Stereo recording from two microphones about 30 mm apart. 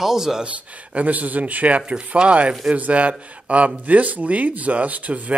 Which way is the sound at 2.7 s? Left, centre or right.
Right.